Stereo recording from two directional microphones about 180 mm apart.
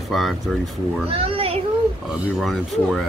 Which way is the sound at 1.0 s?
30° right (ahead or behind).